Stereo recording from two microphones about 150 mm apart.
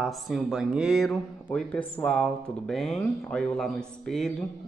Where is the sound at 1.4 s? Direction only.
10° left (ahead or behind).